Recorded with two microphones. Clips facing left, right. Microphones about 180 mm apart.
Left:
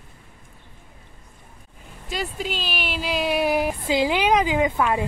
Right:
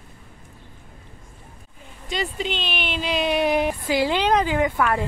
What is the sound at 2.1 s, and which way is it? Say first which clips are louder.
Speech: right 2 dB; 5° left (ahead or behind).